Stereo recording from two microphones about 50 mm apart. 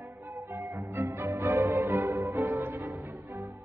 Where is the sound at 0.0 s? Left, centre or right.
Right.